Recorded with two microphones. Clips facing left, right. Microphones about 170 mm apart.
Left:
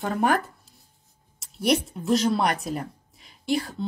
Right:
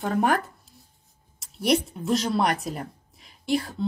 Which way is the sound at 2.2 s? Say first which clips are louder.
Left 1 dB; 40° right (ahead or behind).